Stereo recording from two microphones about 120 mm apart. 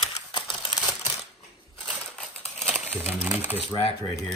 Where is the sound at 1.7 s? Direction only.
5° left (ahead or behind).